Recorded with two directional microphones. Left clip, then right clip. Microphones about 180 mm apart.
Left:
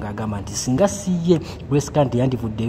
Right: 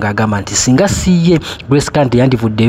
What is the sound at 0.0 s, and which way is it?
Speech, 25° right (ahead or behind).